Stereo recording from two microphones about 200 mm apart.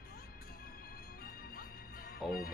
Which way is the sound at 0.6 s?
50° left (ahead or behind).